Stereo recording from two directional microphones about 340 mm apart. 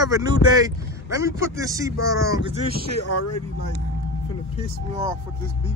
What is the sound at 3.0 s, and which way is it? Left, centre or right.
Speech, left.